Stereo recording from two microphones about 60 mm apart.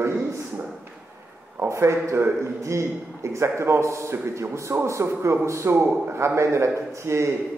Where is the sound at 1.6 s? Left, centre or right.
Right.